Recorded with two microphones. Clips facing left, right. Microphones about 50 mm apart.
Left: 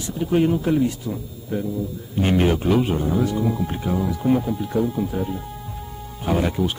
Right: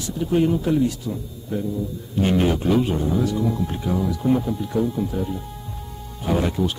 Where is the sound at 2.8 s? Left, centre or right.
Left.